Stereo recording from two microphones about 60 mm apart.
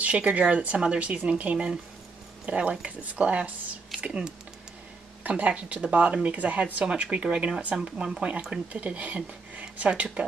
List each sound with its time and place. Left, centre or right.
0.0 s speech: right
5.4 s speech: right